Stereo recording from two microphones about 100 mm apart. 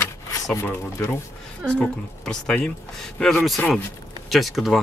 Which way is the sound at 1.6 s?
10° left (ahead or behind).